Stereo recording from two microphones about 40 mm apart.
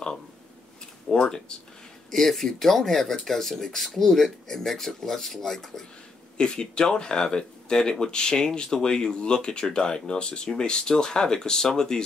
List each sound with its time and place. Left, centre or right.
1.1 s speech: centre
6.3 s speech: centre